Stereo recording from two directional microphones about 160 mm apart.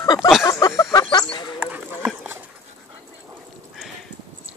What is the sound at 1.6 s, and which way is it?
Clip-clop, 15° right (ahead or behind).